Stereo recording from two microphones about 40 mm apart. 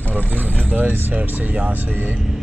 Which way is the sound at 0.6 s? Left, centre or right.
Right.